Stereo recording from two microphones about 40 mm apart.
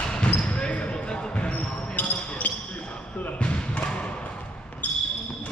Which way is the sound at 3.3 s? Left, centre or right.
Left.